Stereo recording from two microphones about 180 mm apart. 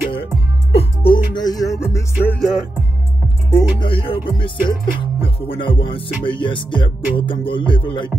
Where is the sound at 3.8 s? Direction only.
30° left (ahead or behind).